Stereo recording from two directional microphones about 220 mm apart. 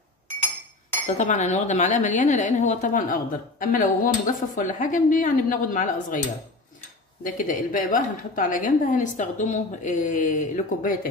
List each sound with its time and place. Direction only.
1.0 s a woman's voice: 35° left (ahead or behind)
7.2 s a woman's voice: 35° left (ahead or behind)